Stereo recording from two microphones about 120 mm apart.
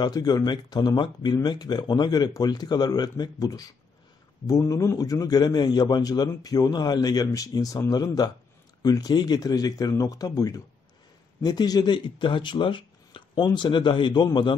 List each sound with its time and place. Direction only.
0.0 s a man's voice: 35° left (ahead or behind)